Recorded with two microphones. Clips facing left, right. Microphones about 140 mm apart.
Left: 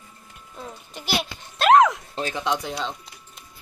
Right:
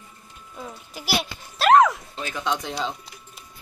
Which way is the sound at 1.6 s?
Centre (ahead or behind).